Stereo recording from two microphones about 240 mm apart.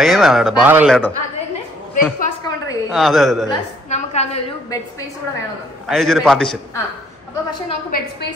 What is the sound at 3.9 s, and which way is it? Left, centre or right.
Speech, left.